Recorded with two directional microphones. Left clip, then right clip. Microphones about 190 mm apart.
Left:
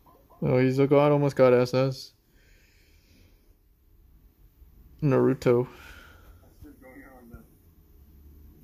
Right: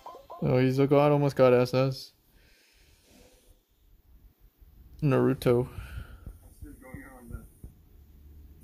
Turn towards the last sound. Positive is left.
turn(degrees=-35)  # may be behind; listen again after turning